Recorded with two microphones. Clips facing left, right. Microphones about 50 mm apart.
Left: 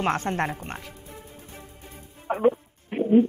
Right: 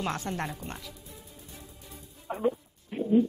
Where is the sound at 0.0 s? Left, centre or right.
Left.